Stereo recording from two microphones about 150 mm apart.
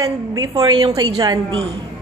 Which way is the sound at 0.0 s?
25° right (ahead or behind).